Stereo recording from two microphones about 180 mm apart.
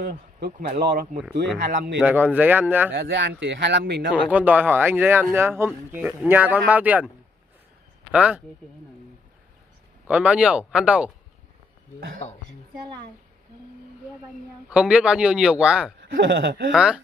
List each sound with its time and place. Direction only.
0.0 s speech: 60° right (ahead or behind)
2.0 s speech: 10° right (ahead or behind)
2.9 s speech: 90° right; by 4.1 s 70° right (ahead or behind)
4.1 s speech: 10° right (ahead or behind)
8.1 s speech: 5° right (ahead or behind)
10.0 s speech: 10° right (ahead or behind)
12.2 s a woman's voice: 40° left (ahead or behind)
14.7 s speech: 5° right (ahead or behind)
16.0 s speech: 80° right
16.7 s speech: 5° right (ahead or behind)